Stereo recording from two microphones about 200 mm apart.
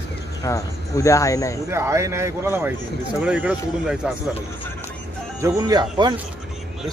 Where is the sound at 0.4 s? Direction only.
15° left (ahead or behind).